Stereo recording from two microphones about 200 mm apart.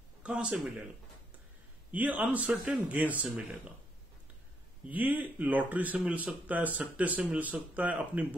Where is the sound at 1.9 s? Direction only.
10° right (ahead or behind).